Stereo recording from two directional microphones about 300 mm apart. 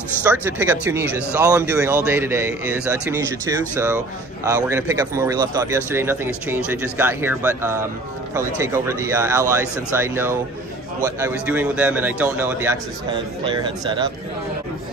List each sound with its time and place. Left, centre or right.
0.2 s speech: centre